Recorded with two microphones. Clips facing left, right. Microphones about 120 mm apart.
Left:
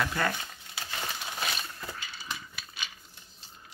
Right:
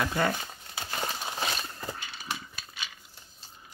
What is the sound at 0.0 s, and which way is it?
Speech, 15° right (ahead or behind).